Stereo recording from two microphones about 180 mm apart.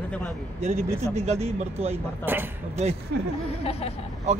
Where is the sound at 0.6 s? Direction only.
40° right (ahead or behind).